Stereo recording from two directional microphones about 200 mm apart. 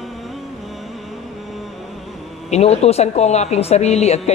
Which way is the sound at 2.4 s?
35° left (ahead or behind).